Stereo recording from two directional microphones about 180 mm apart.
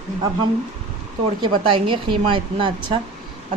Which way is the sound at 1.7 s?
25° right (ahead or behind).